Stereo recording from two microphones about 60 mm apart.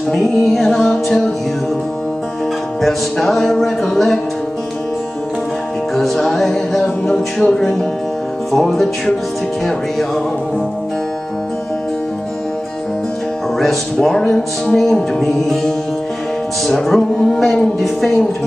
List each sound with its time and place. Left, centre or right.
0.1 s music: centre
2.8 s music: centre
5.9 s music: centre
13.6 s music: centre